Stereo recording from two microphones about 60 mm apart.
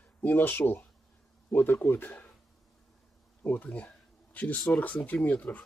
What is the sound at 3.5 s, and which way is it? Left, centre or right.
Speech, left.